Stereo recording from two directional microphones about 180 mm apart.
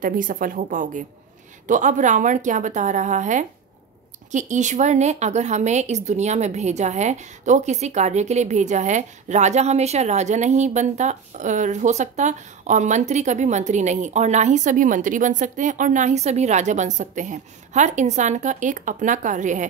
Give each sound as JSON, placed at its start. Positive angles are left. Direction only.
{"t": 0.0, "sound": "a woman's voice", "side_deg": -50}